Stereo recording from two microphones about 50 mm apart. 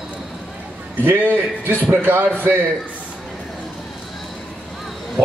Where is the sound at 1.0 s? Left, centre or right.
Right.